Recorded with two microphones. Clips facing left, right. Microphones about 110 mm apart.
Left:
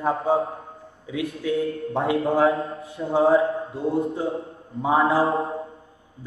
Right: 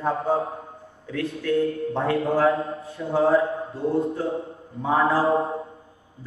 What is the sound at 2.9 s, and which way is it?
Mantra, 25° left (ahead or behind).